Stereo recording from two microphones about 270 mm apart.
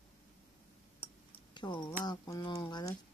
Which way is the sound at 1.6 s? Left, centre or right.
Centre.